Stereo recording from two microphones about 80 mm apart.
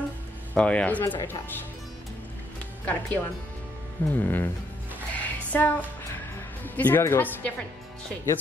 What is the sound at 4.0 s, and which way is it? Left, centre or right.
Speech, left.